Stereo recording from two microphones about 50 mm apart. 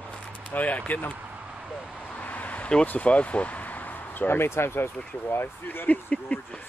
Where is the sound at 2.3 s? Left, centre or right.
Left.